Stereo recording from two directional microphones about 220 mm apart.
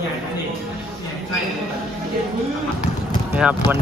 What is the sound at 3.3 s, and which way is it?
Speech, 5° right (ahead or behind).